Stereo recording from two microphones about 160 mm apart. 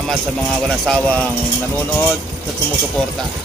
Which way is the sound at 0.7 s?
5° left (ahead or behind).